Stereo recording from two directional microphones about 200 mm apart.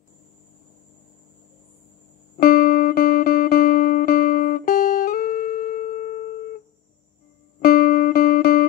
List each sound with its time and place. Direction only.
2.3 s music: 45° left (ahead or behind)
7.6 s music: 45° left (ahead or behind)